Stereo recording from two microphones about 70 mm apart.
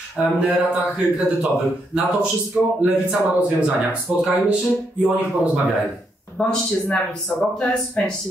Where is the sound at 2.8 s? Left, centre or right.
Centre.